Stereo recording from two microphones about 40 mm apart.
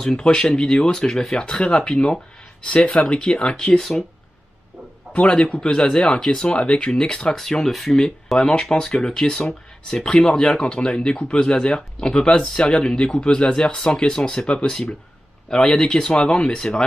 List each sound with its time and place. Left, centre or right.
0.0 s speech: centre
1.5 s speech: left
5.1 s speech: left
7.3 s speech: centre
8.4 s speech: centre